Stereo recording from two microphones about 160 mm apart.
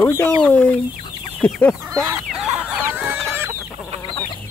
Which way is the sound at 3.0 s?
Centre (ahead or behind).